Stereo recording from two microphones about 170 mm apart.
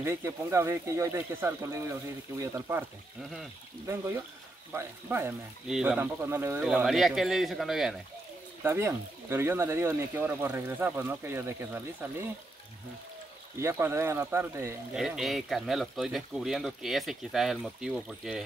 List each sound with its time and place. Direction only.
0.0 s speech: 15° right (ahead or behind)
3.8 s speech: 15° right (ahead or behind)
5.7 s speech: 5° right (ahead or behind)
5.9 s speech: 15° right (ahead or behind)
6.6 s speech: 5° right (ahead or behind)
8.6 s speech: 15° right (ahead or behind)
13.6 s speech: 15° right (ahead or behind)
15.0 s speech: centre (ahead or behind)